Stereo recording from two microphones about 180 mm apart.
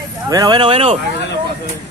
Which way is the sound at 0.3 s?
20° right (ahead or behind).